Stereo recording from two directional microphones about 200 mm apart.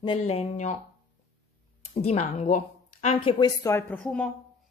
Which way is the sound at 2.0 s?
30° left (ahead or behind).